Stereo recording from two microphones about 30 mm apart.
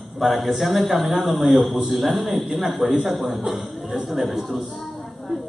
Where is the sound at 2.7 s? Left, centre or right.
Centre.